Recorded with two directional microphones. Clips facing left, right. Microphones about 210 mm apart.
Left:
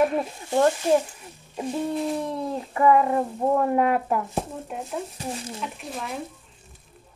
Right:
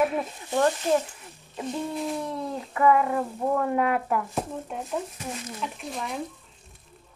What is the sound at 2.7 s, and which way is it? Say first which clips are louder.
Speech: left 2 dB; 35° left (ahead or behind).